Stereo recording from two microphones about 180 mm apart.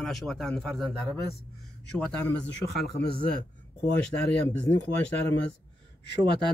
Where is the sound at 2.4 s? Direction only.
65° left (ahead or behind).